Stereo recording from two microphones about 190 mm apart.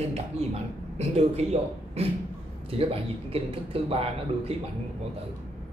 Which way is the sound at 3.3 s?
30° right (ahead or behind).